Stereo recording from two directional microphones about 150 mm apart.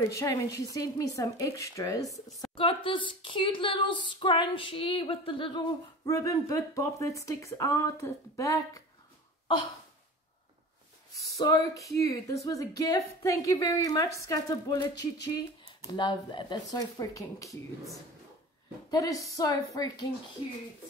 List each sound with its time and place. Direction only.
0.0 s speech: 20° left (ahead or behind)
2.5 s speech: 35° left (ahead or behind)
11.1 s speech: 25° left (ahead or behind)
18.9 s speech: 25° left (ahead or behind)